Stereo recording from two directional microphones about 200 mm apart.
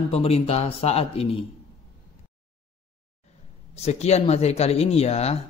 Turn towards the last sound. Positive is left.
turn(degrees=30)  # may be behind; listen again after turning